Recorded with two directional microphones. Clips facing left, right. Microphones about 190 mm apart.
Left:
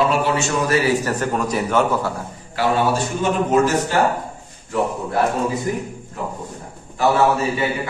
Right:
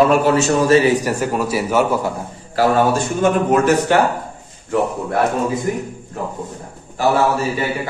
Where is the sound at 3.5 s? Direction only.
60° right (ahead or behind).